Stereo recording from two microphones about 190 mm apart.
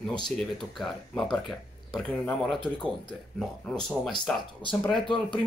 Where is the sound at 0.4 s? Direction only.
Centre (ahead or behind).